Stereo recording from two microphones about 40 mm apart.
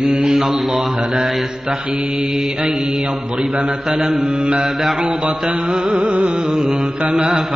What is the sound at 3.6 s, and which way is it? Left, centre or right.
Mantra, centre.